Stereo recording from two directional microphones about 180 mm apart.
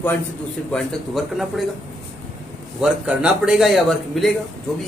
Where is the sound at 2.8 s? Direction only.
5° right (ahead or behind).